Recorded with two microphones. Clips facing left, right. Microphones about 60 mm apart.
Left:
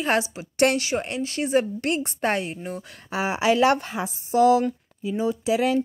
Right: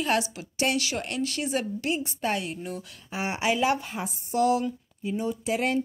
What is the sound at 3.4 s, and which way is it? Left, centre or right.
Speech, left.